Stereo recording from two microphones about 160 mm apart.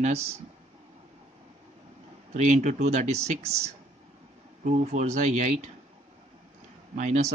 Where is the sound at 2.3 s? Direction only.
50° right (ahead or behind).